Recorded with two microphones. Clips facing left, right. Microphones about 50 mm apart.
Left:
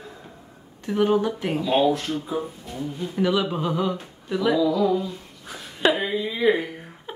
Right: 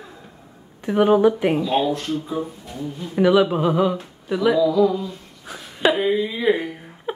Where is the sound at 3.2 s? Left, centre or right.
Centre.